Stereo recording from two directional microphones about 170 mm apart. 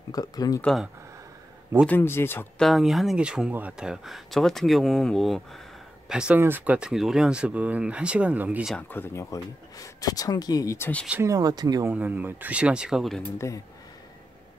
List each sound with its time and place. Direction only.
0.1 s speech: 20° left (ahead or behind)
0.6 s speech: 5° left (ahead or behind)
1.9 s speech: 10° left (ahead or behind)
2.6 s speech: centre (ahead or behind)
8.7 s speech: 10° left (ahead or behind)
11.1 s speech: 15° right (ahead or behind)
11.9 s speech: 10° right (ahead or behind)
13.4 s speech: 15° left (ahead or behind)